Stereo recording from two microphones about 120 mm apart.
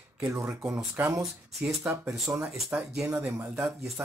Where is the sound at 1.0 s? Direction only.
15° right (ahead or behind).